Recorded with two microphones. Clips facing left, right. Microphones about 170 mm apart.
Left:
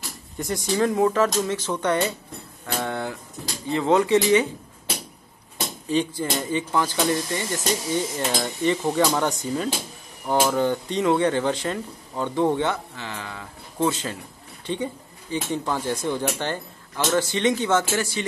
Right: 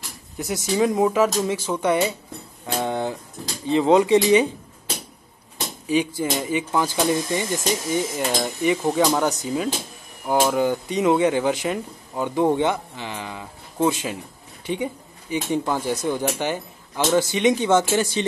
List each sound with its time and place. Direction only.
0.4 s speech: 5° right (ahead or behind)
5.9 s speech: 10° right (ahead or behind)
8.2 s speech: centre (ahead or behind); by 18.2 s 20° right (ahead or behind)